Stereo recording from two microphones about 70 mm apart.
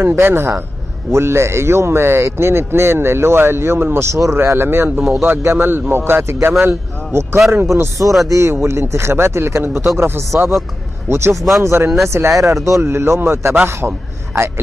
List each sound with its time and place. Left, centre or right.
0.1 s speech: right
11.3 s speech: centre
11.6 s a man's voice: right